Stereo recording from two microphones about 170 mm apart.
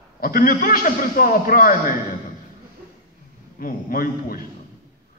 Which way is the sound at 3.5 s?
55° left (ahead or behind).